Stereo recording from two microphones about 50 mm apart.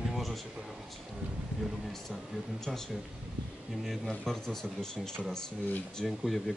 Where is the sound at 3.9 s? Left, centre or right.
Centre.